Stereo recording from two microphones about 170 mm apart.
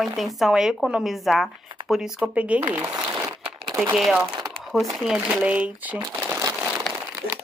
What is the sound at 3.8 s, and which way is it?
Speech, 5° right (ahead or behind).